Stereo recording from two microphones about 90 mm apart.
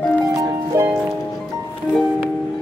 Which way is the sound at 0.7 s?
30° right (ahead or behind).